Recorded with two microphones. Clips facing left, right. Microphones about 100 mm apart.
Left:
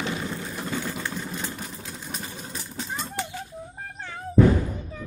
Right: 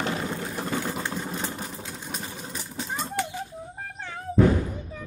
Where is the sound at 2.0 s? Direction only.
10° right (ahead or behind).